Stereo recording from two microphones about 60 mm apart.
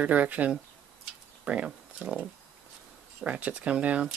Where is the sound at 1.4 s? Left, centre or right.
Right.